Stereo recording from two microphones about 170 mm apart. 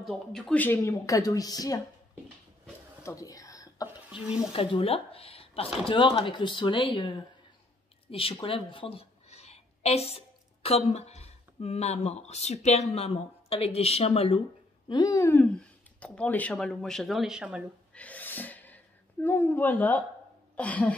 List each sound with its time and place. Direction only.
0.0 s speech: 5° left (ahead or behind); by 1.8 s 20° left (ahead or behind)
3.0 s a sound: 15° left (ahead or behind)
4.6 s speech: 30° left (ahead or behind)
8.1 s a woman's voice: 35° left (ahead or behind)
14.9 s speech: 25° left (ahead or behind); by 17.6 s 5° right (ahead or behind)
17.9 s gasp: 10° left (ahead or behind)
19.2 s speech: 15° left (ahead or behind)